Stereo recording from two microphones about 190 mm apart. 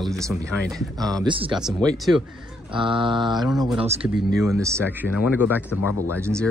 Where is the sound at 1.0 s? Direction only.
20° right (ahead or behind).